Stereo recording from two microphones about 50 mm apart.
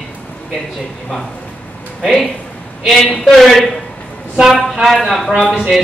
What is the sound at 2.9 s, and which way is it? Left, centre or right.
Speech, centre.